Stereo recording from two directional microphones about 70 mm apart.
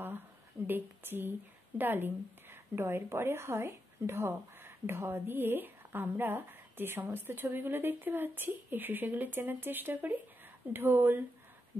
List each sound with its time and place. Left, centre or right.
0.7 s a woman's voice: right